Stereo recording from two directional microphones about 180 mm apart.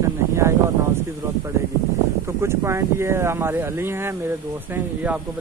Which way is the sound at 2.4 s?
15° right (ahead or behind).